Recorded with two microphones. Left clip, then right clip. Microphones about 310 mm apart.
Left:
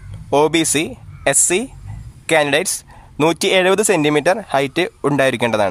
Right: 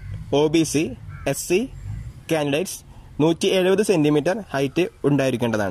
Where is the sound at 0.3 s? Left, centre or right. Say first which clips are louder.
Left 4 dB; left.